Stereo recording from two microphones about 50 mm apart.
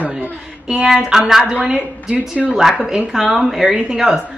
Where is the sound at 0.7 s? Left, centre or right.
Centre.